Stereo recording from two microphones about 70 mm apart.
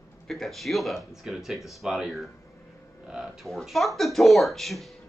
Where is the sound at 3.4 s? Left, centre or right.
Centre.